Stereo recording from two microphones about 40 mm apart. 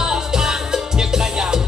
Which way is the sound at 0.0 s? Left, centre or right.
Centre.